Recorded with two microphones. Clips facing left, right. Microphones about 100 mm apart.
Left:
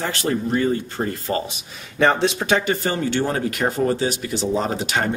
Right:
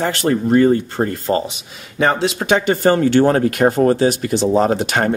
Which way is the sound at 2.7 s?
50° right (ahead or behind).